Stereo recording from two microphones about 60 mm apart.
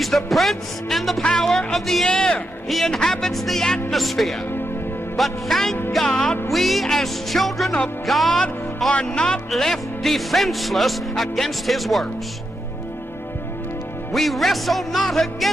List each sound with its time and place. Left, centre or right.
0.0 s speech: centre
1.2 s music: centre
2.7 s speech: centre
5.9 s music: centre
6.5 s speech: centre
8.9 s music: centre
9.5 s speech: centre
14.1 s speech: centre